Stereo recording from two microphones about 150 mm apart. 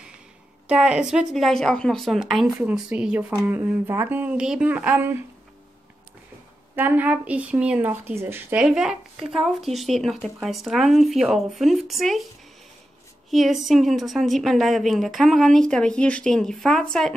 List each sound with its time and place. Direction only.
0.7 s speech: 5° right (ahead or behind)
6.7 s speech: 15° right (ahead or behind)
13.3 s speech: centre (ahead or behind)